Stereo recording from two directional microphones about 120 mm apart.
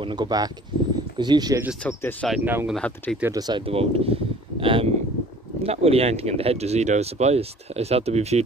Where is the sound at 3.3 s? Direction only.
35° right (ahead or behind).